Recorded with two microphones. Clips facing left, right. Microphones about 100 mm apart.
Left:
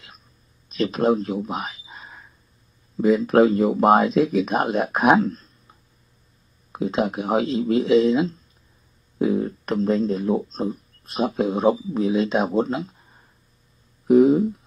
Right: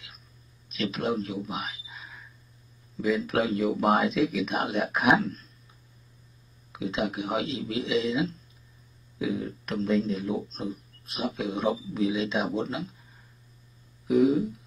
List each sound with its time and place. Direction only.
0.7 s a sound: 40° left (ahead or behind)
3.0 s speech: 40° left (ahead or behind)
6.7 s speech: 45° left (ahead or behind)
14.0 s speech: 40° left (ahead or behind)